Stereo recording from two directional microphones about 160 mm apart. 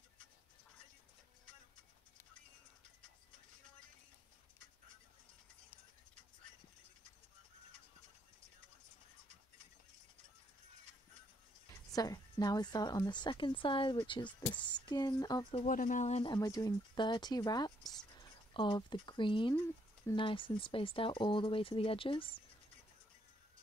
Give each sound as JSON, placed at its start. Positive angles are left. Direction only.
{"t": 11.9, "sound": "speech", "side_deg": 25}
{"t": 15.6, "sound": "speech", "side_deg": 55}
{"t": 16.3, "sound": "speech", "side_deg": 25}